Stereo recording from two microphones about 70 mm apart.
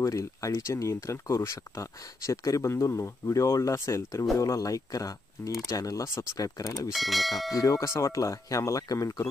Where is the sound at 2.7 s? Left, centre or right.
Left.